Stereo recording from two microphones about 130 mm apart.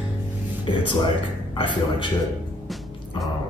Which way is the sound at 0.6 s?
40° left (ahead or behind).